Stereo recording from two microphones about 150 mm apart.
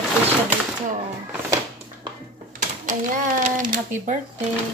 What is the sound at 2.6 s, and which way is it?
Speech, 60° right (ahead or behind).